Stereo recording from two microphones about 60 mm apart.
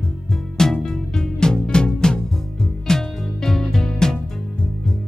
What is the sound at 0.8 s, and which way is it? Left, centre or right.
Music, centre.